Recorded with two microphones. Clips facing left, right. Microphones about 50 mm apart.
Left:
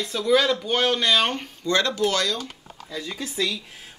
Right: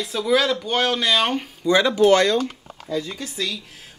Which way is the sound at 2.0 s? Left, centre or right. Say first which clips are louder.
Right 8 dB; right.